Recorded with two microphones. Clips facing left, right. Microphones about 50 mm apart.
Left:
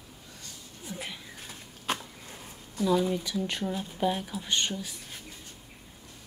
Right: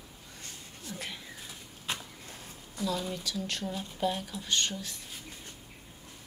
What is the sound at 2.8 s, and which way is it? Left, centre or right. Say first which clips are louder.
Speech: left 7 dB; centre.